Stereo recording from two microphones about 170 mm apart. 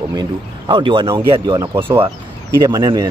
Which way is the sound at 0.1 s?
25° right (ahead or behind).